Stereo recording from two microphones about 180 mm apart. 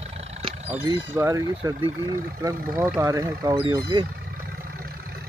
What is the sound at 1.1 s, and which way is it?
Speech, 15° right (ahead or behind).